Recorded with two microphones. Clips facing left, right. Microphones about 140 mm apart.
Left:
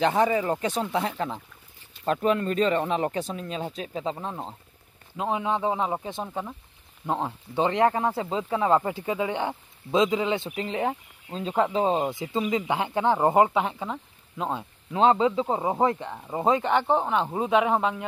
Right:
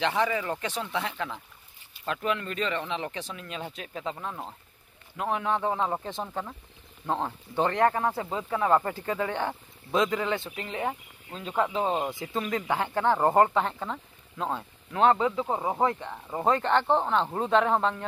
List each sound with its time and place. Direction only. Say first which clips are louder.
0.0 s speech: left 5 dB; 40° left (ahead or behind)
12.0 s speech: left 4 dB; 15° left (ahead or behind)